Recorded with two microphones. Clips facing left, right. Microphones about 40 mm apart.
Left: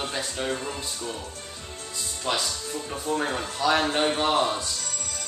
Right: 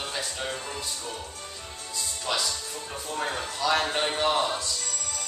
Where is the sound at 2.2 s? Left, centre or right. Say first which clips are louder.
Left 2 dB; centre.